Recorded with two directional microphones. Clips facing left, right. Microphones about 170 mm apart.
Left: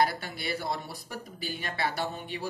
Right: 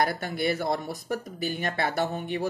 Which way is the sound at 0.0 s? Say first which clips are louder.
Right 3 dB; 50° right (ahead or behind).